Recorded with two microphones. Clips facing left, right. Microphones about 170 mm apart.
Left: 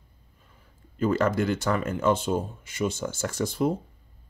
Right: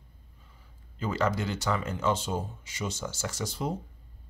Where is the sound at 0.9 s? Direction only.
55° left (ahead or behind).